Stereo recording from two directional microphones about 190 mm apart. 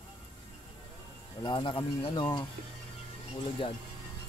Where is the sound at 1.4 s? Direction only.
25° left (ahead or behind).